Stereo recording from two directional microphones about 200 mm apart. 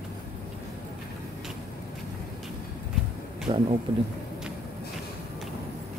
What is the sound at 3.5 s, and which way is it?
Speech, 20° right (ahead or behind).